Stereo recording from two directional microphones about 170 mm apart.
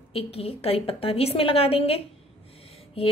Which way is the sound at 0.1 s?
35° left (ahead or behind).